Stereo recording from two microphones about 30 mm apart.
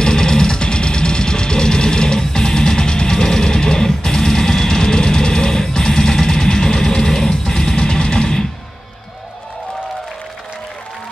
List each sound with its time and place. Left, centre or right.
0.0 s music: left
0.6 s music: left